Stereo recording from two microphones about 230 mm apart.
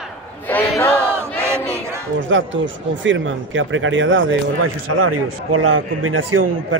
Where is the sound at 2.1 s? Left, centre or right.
Right.